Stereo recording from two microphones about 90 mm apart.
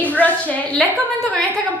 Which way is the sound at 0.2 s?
15° left (ahead or behind).